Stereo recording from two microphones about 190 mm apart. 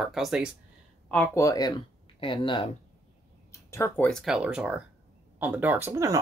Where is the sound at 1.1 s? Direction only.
10° left (ahead or behind).